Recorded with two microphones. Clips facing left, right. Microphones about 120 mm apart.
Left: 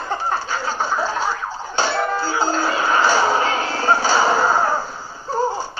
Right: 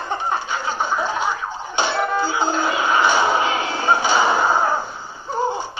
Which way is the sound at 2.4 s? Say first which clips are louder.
Even; 15° right (ahead or behind).